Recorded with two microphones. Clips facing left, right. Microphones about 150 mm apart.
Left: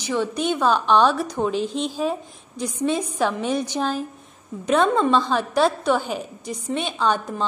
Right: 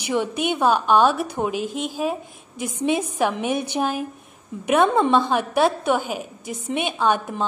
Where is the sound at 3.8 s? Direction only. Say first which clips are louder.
Right 1 dB; 10° right (ahead or behind).